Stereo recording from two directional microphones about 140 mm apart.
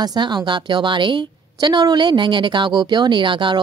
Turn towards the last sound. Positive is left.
turn(degrees=-35)  # may be behind; listen again after turning